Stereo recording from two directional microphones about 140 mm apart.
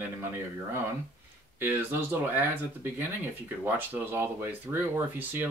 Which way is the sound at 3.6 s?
15° right (ahead or behind).